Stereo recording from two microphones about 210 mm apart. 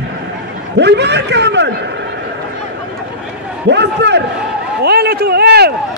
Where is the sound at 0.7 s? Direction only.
55° right (ahead or behind).